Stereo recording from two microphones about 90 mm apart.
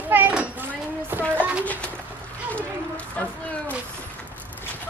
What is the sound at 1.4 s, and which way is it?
Speech, 15° left (ahead or behind).